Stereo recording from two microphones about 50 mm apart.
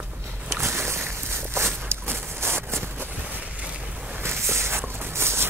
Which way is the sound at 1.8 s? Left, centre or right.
Right.